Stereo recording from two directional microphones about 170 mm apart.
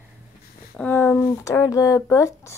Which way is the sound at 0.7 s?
10° left (ahead or behind).